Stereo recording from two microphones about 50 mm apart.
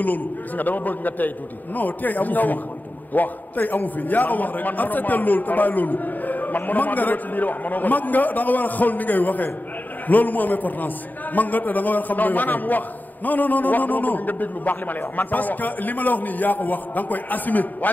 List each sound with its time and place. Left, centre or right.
0.0 s a man's voice: left